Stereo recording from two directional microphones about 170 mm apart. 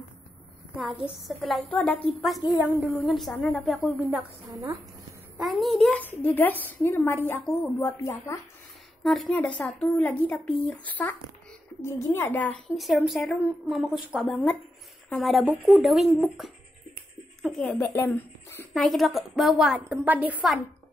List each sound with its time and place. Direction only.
0.7 s a woman's voice: 5° right (ahead or behind)
5.4 s a woman's voice: centre (ahead or behind); by 8.4 s 15° left (ahead or behind)
9.0 s a woman's voice: 5° left (ahead or behind)
18.8 s a woman's voice: centre (ahead or behind)